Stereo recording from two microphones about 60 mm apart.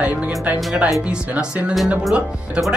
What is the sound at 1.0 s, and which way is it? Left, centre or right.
Speech, centre.